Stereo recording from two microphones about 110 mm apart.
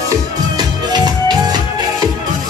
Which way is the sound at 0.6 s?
40° right (ahead or behind).